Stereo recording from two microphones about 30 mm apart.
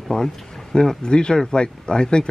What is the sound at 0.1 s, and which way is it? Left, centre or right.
Speech, left.